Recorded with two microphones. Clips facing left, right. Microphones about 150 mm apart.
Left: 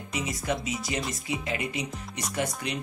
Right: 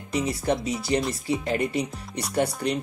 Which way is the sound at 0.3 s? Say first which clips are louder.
Right 3 dB; 35° right (ahead or behind).